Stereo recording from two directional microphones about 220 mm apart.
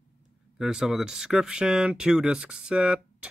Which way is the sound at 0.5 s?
5° right (ahead or behind).